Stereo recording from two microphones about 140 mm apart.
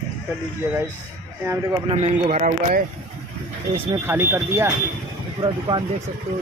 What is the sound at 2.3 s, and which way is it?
Speech, 80° right.